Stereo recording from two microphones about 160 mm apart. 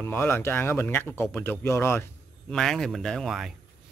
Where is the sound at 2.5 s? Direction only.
Centre (ahead or behind).